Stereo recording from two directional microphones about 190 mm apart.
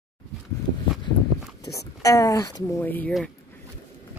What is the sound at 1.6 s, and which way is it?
Speech, 20° left (ahead or behind).